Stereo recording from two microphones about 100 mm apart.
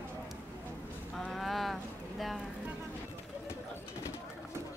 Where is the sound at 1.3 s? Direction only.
Centre (ahead or behind).